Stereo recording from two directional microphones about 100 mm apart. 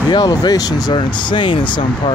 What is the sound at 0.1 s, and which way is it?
Speech, 45° left (ahead or behind).